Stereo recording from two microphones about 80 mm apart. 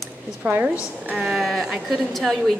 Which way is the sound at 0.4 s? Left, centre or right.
Centre.